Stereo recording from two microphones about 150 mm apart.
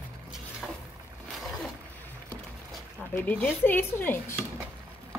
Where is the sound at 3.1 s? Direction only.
15° left (ahead or behind).